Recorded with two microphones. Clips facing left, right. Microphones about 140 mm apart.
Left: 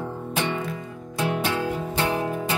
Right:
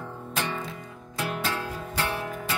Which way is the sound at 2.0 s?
20° left (ahead or behind).